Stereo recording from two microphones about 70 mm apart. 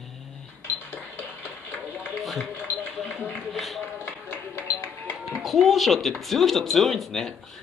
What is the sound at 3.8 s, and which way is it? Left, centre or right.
Music, left.